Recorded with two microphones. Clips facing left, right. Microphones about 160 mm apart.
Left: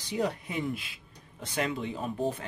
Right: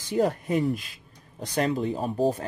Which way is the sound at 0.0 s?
45° right (ahead or behind).